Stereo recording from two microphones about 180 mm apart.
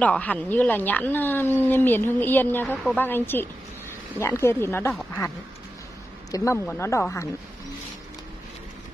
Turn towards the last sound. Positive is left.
turn(degrees=15)  # may be behind; listen again after turning